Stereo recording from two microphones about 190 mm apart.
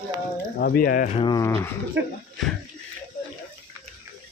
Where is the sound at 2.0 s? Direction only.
75° right (ahead or behind).